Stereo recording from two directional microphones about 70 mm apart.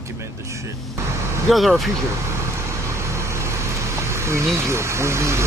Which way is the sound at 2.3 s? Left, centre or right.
Right.